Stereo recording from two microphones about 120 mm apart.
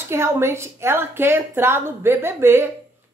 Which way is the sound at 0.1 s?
20° right (ahead or behind).